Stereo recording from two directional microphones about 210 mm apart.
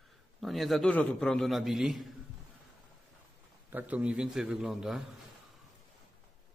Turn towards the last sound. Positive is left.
turn(degrees=0)  # may be behind; listen again after turning